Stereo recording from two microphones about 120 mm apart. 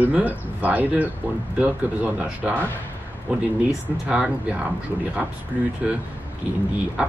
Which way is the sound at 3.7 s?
5° right (ahead or behind).